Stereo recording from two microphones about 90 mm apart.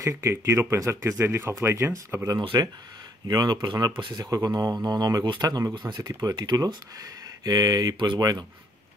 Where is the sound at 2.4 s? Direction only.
60° right (ahead or behind).